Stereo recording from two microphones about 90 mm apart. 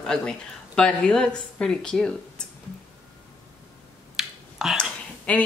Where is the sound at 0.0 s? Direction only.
5° left (ahead or behind).